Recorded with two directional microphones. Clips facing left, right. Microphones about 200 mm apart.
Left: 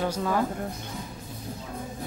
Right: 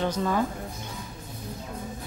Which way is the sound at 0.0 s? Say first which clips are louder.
Right 1 dB; 10° left (ahead or behind).